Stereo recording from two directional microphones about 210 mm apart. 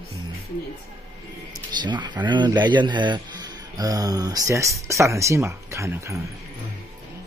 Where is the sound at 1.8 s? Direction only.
20° right (ahead or behind).